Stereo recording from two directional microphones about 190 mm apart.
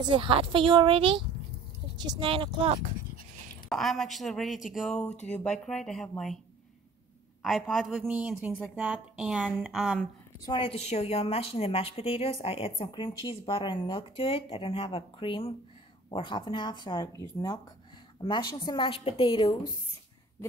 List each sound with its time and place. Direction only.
0.0 s a woman's voice: 25° right (ahead or behind)
3.6 s a woman's voice: centre (ahead or behind)
7.4 s a woman's voice: centre (ahead or behind)
10.4 s a woman's voice: 25° left (ahead or behind)